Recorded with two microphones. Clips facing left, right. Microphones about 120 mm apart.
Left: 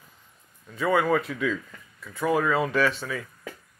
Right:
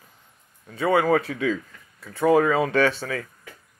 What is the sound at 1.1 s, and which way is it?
Speech, 60° right (ahead or behind).